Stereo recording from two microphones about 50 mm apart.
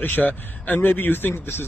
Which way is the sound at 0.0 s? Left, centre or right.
Left.